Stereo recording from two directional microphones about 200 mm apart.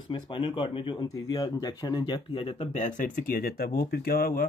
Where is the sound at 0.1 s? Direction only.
25° left (ahead or behind).